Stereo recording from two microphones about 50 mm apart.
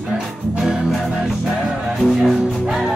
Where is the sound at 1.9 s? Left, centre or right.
Centre.